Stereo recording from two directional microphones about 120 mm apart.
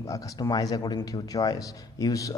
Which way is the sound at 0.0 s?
25° left (ahead or behind).